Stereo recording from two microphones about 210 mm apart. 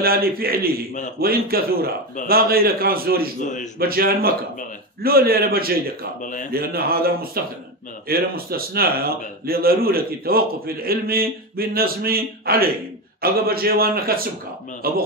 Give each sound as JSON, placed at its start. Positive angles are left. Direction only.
{"t": 0.0, "sound": "a man's voice", "side_deg": -45}
{"t": 3.3, "sound": "a man's voice", "side_deg": 35}
{"t": 3.8, "sound": "a man's voice", "side_deg": -45}